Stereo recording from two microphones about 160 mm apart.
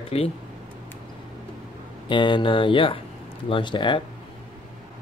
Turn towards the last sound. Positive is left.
turn(degrees=30)  # may be behind; listen again after turning